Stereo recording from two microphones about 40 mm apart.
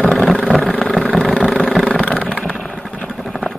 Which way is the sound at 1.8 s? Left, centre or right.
Left.